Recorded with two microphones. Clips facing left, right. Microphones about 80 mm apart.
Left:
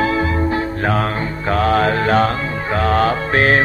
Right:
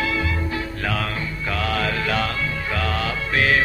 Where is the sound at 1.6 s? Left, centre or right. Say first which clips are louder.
Left 8 dB; left.